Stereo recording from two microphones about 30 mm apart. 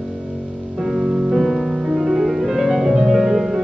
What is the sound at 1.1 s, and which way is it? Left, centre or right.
Music, right.